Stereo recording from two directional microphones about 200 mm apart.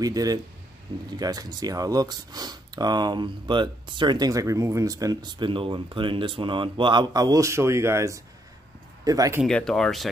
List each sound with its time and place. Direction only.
0.0 s speech: 20° right (ahead or behind)
9.4 s speech: 5° left (ahead or behind)